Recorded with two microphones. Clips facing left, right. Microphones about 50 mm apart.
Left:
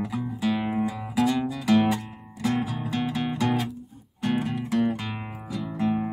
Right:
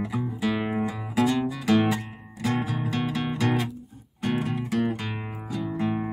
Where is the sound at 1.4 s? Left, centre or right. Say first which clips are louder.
Even; centre.